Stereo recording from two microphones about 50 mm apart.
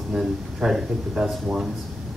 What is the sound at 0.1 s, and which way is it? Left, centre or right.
Speech, centre.